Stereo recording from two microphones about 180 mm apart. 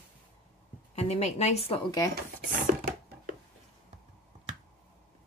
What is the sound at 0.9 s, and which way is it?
Speech, 40° left (ahead or behind).